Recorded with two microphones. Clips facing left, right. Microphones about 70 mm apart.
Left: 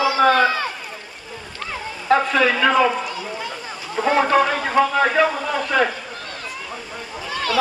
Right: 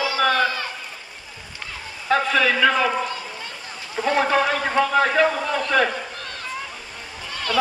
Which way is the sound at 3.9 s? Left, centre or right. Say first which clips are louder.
Left 3 dB; left.